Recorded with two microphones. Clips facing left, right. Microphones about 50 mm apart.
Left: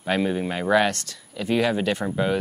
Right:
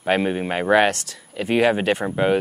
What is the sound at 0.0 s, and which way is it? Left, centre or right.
Speech, right.